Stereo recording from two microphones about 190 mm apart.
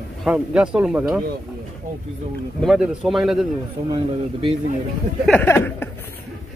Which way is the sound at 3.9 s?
25° right (ahead or behind).